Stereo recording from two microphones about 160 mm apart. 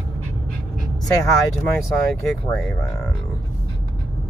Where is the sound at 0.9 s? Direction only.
25° left (ahead or behind).